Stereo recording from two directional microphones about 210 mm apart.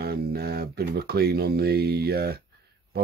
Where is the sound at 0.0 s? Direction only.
50° right (ahead or behind).